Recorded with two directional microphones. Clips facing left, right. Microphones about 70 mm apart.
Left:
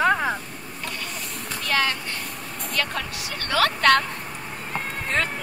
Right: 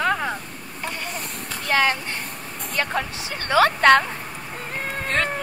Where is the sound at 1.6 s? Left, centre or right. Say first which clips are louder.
Right 4 dB; right.